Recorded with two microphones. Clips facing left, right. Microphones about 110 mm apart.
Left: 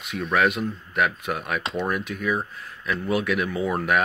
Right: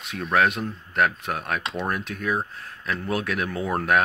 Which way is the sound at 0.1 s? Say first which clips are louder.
Even; centre (ahead or behind).